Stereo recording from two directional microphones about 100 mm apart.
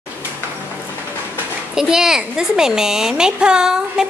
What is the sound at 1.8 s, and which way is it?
Speech, 5° right (ahead or behind).